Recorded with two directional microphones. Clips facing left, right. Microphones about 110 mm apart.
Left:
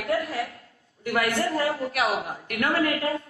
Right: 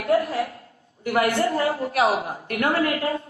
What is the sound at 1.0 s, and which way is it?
A woman's voice, 30° right (ahead or behind).